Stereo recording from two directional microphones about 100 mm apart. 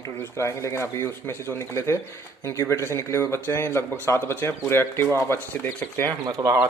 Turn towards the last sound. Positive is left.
turn(degrees=-35)  # may be behind; listen again after turning